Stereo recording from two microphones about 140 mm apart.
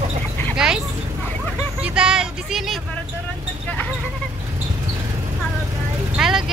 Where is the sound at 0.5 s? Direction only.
5° right (ahead or behind).